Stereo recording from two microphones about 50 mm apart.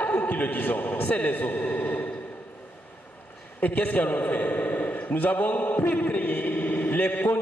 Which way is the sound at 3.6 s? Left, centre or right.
Left.